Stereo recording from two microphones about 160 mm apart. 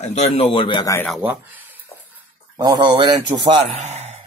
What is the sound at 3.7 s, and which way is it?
Speech, 45° right (ahead or behind).